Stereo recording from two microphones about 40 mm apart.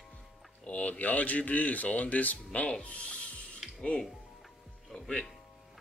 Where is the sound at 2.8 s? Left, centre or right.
Left.